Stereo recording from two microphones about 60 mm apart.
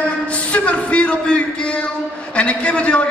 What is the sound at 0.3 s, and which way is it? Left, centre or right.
A man's voice, left.